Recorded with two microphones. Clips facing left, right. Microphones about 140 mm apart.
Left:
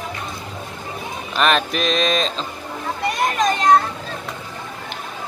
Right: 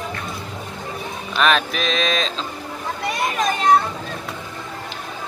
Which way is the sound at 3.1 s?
Centre (ahead or behind).